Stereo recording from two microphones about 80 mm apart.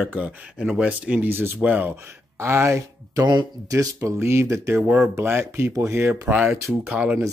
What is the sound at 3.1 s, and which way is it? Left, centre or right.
Speech, right.